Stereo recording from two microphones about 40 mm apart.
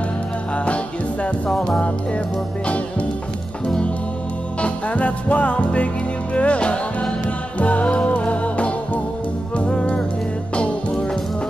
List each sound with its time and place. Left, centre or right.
2.6 s music: left